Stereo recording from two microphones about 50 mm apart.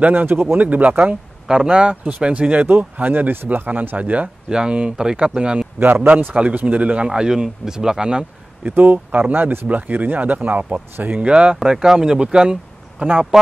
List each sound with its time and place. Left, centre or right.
0.0 s speech: right
0.7 s speech: right
2.6 s speech: right
4.5 s speech: centre
5.8 s a man's voice: right
6.3 s speech: right
7.1 s speech: centre
8.6 s speech: right
9.7 s speech: right
13.0 s speech: right